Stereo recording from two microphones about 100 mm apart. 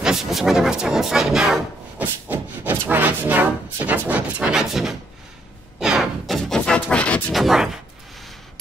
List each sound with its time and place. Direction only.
0.0 s speech: 5° right (ahead or behind)
2.2 s speech: 20° right (ahead or behind)
5.8 s a sound: 5° right (ahead or behind); by 7.3 s 15° left (ahead or behind)
7.3 s speech: centre (ahead or behind)